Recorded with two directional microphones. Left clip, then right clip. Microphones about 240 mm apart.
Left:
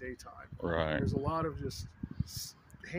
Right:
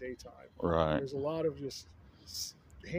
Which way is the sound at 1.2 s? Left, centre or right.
Centre.